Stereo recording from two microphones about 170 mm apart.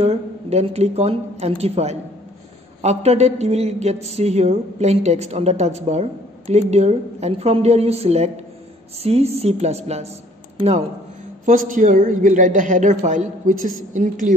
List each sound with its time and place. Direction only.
0.0 s speech: 40° right (ahead or behind)
11.4 s a man's voice: 50° right (ahead or behind)